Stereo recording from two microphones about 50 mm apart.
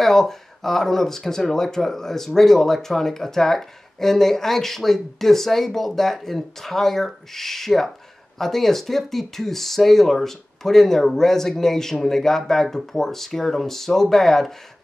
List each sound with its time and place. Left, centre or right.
0.0 s speech: centre